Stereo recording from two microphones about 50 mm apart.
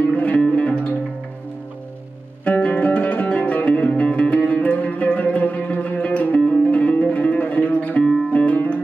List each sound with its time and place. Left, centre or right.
0.0 s music: left
2.4 s music: left